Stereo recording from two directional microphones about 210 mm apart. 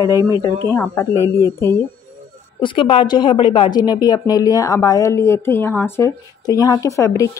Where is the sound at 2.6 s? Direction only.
25° left (ahead or behind).